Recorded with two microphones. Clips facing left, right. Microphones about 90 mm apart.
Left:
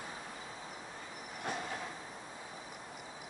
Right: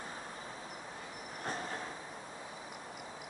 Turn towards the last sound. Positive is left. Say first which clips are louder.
# even
turn(degrees=-35)  # may be behind; listen again after turning